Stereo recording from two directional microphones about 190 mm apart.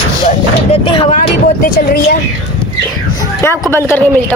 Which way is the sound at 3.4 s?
10° left (ahead or behind).